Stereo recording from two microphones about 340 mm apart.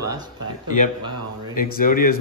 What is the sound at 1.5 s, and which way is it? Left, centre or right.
Speech, left.